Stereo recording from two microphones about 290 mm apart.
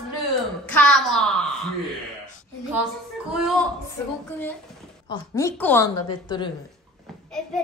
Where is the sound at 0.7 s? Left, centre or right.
Centre.